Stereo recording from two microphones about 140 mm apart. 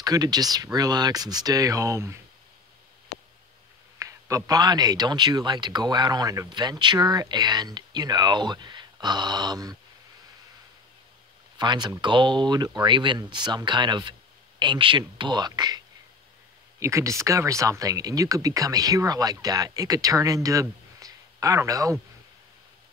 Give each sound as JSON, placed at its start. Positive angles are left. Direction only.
{"t": 0.0, "sound": "speech", "side_deg": -25}
{"t": 4.0, "sound": "speech", "side_deg": -25}
{"t": 11.5, "sound": "speech", "side_deg": -30}
{"t": 16.8, "sound": "speech", "side_deg": -20}